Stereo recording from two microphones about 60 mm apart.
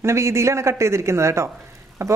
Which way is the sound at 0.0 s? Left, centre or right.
Right.